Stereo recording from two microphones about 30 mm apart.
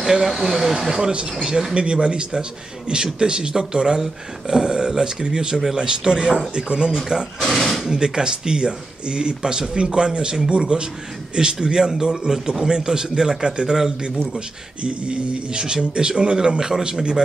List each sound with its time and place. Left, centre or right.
0.0 s speech: centre
0.7 s speech: centre
7.4 s speech: centre
7.8 s speech: right
14.8 s speech: right
16.5 s speech: centre